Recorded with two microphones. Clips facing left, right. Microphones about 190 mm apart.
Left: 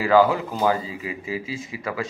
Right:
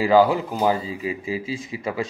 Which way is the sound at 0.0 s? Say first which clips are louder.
Right 1 dB; 15° right (ahead or behind).